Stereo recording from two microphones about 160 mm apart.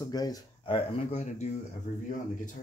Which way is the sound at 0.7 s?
45° left (ahead or behind).